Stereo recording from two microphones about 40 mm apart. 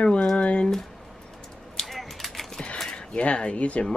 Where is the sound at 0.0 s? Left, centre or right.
Left.